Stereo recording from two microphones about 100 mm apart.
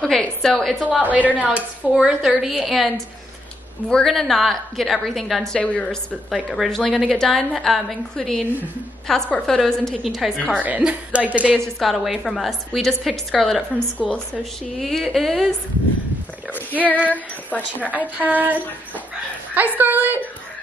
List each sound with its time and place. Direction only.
0.0 s a woman's voice: 5° left (ahead or behind)
1.0 s a woman's voice: 15° right (ahead or behind); by 2.9 s centre (ahead or behind)
3.9 s a woman's voice: 5° left (ahead or behind)
6.3 s a woman's voice: centre (ahead or behind)
10.6 s a woman's voice: 15° right (ahead or behind)
11.5 s a woman's voice: centre (ahead or behind)
13.9 s speech: 15° left (ahead or behind)
14.8 s a woman's voice: centre (ahead or behind)
16.5 s speech: 15° left (ahead or behind)
17.9 s a woman's voice: 15° right (ahead or behind)
19.8 s a woman's voice: 20° right (ahead or behind)